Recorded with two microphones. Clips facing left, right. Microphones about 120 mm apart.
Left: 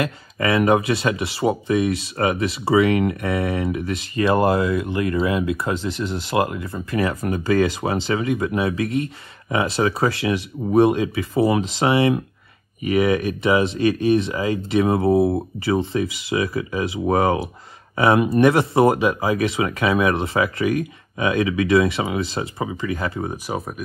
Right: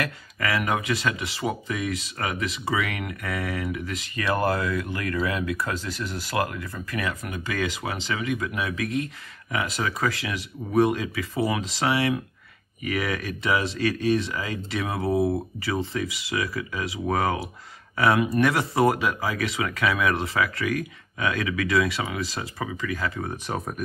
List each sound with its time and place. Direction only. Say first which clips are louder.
0.0 s speech: left 6 dB; 25° left (ahead or behind)
23.2 s speech: left 4 dB; 10° left (ahead or behind)